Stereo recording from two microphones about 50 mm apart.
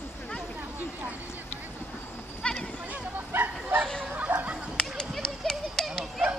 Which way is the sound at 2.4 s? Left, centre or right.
Left.